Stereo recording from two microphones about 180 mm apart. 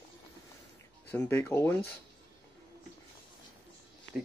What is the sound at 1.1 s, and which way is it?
Speech, 10° left (ahead or behind).